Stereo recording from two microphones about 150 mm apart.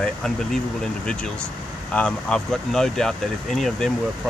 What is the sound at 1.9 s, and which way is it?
Speech, 5° left (ahead or behind).